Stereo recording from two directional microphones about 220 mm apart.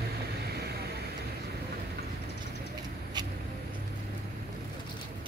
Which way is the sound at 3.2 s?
20° right (ahead or behind).